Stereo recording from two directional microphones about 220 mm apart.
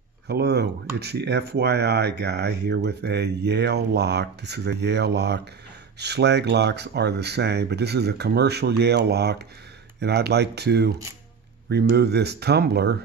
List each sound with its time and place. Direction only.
0.3 s speech: 50° right (ahead or behind)